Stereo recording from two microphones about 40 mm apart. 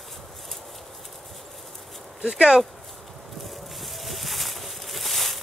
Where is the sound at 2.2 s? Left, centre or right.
Centre.